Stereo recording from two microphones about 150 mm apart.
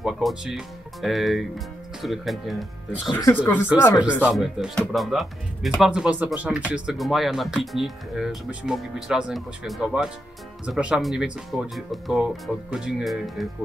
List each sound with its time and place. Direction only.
0.0 s speech: centre (ahead or behind)
3.1 s speech: 25° left (ahead or behind)
3.3 s speech: 15° left (ahead or behind)
4.0 s speech: 5° right (ahead or behind)